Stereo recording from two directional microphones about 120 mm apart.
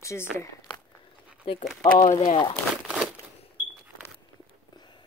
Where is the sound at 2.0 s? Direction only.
50° left (ahead or behind).